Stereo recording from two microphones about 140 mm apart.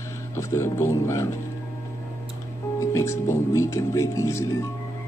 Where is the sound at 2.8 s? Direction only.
20° left (ahead or behind).